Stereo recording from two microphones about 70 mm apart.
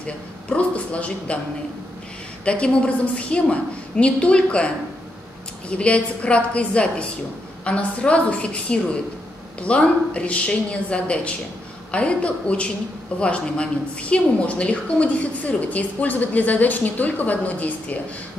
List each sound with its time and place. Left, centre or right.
0.0 s a woman's voice: centre
2.4 s a woman's voice: centre